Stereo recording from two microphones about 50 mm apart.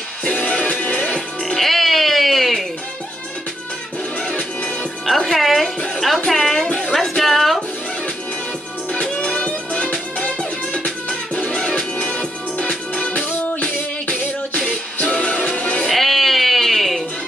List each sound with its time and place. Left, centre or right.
0.2 s music: left
1.4 s music: centre
5.0 s music: centre
8.9 s music: centre
15.9 s music: centre